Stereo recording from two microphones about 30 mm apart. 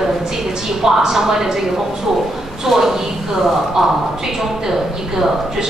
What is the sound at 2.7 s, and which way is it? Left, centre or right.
A woman's voice, centre.